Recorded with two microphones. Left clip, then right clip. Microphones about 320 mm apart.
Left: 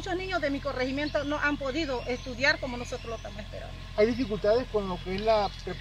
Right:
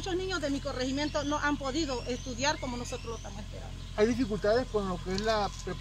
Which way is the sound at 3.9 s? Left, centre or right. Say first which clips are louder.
Left 3 dB; centre.